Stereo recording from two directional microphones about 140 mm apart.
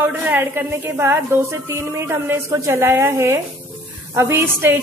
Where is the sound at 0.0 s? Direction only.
15° right (ahead or behind).